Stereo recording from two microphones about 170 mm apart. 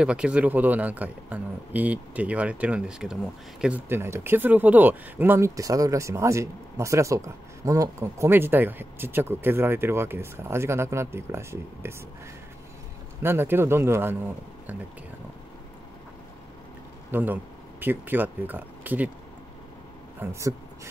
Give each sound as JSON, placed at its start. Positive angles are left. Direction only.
{"t": 0.0, "sound": "speech", "side_deg": -5}
{"t": 13.2, "sound": "speech", "side_deg": -15}
{"t": 17.1, "sound": "speech", "side_deg": -10}
{"t": 20.2, "sound": "speech", "side_deg": -15}